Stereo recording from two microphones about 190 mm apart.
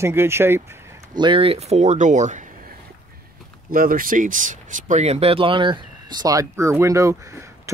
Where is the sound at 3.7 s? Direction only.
45° right (ahead or behind).